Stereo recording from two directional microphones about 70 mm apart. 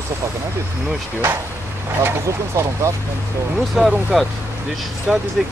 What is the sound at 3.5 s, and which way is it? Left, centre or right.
Speech, centre.